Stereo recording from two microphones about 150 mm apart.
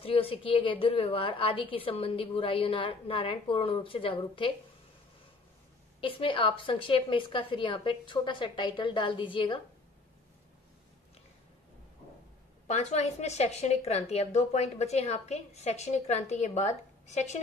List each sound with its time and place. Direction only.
0.0 s a woman's voice: 40° left (ahead or behind)
5.9 s a woman's voice: 35° left (ahead or behind)
12.6 s a woman's voice: 45° left (ahead or behind)